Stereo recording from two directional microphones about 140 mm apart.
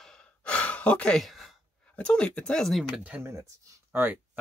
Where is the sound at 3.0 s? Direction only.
15° right (ahead or behind).